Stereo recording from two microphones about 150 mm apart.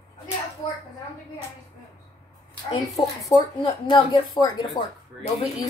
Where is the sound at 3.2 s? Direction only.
25° left (ahead or behind).